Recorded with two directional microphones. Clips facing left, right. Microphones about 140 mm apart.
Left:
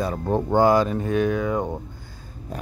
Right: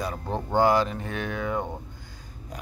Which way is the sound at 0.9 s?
35° left (ahead or behind).